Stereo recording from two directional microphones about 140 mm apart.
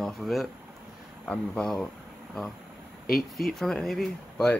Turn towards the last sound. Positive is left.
turn(degrees=0)  # may be behind; listen again after turning